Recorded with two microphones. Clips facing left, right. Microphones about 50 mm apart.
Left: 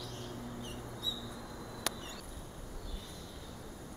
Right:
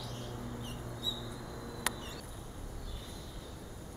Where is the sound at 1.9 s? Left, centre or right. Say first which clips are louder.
Right 2 dB; centre.